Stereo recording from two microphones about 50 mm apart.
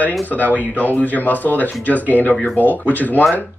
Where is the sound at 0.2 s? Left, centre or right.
Left.